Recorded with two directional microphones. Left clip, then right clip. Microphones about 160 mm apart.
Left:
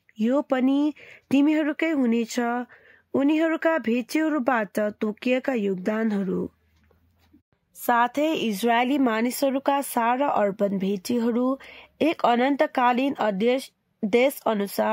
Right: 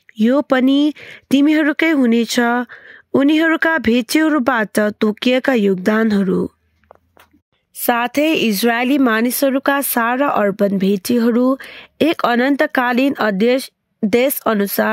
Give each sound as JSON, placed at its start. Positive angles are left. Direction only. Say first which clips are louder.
{"t": 0.2, "sound": "speech", "louder": "right 9 dB", "side_deg": -45}
{"t": 7.8, "sound": "speech", "louder": "right 6 dB", "side_deg": -55}